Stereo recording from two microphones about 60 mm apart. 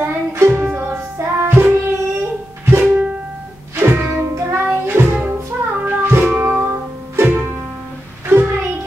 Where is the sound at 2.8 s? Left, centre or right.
Right.